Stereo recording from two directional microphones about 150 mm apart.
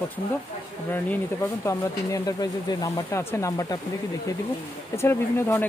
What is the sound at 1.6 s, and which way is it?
Speech, 20° left (ahead or behind).